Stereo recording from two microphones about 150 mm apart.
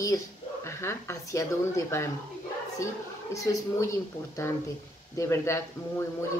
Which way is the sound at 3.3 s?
20° left (ahead or behind).